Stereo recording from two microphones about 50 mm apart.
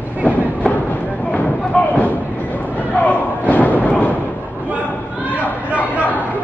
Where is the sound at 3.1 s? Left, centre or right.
Left.